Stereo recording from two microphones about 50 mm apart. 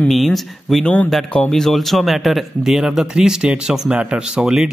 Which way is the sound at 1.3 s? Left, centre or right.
Centre.